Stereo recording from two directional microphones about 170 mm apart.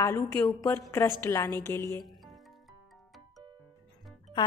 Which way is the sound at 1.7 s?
25° right (ahead or behind).